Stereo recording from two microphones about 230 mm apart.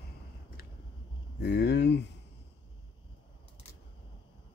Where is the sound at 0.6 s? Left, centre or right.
Left.